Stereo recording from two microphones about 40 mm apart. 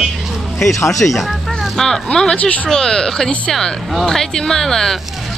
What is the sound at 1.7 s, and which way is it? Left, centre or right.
Speech, centre.